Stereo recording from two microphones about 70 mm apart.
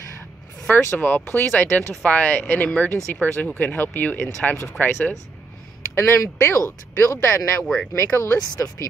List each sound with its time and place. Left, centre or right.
0.7 s speech: left
5.9 s speech: left
7.6 s speech: centre
7.9 s speech: left
8.4 s speech: left